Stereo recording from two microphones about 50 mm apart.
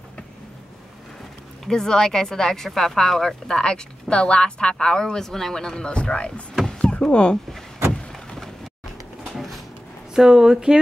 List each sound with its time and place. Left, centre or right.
1.7 s speech: centre
6.8 s a sound: centre
7.9 s vehicle: centre
9.3 s cupboard open or close: centre
10.1 s speech: centre